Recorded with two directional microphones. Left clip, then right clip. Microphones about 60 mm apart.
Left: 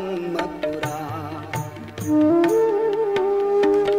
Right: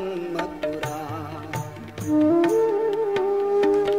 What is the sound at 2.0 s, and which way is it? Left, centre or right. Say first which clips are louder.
Music: left 2 dB; right.